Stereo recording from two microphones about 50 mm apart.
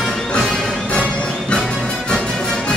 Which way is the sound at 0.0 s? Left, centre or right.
Centre.